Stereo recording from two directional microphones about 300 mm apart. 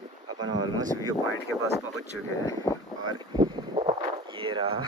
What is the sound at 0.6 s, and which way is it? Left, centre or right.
Speech, centre.